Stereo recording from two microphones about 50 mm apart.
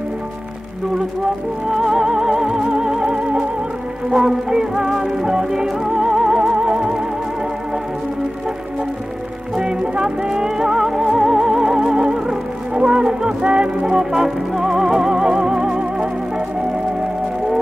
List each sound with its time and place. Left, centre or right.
1.7 s music: centre
9.6 s music: centre